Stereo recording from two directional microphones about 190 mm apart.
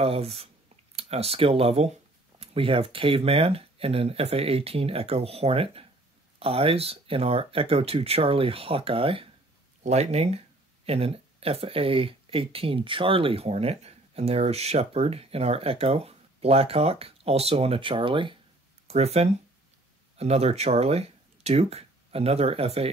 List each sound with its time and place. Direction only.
0.0 s speech: 30° right (ahead or behind)